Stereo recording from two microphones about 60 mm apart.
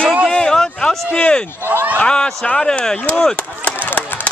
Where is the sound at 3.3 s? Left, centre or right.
Left.